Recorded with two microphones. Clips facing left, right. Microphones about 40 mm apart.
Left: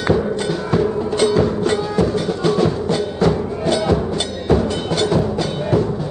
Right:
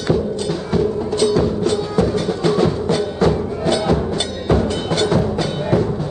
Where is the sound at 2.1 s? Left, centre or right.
Centre.